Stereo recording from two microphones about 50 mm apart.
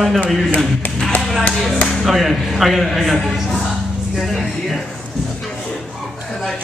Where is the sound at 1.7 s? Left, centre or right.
Centre.